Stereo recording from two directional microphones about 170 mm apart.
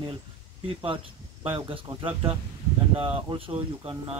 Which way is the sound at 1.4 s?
30° right (ahead or behind).